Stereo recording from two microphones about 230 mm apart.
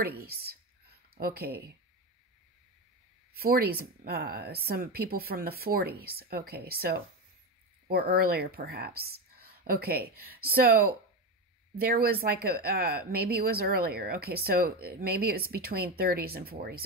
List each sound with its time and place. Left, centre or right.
0.0 s speech: right
3.3 s speech: right